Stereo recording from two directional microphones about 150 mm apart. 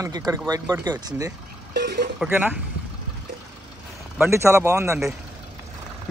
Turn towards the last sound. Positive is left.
turn(degrees=-20)  # may be behind; listen again after turning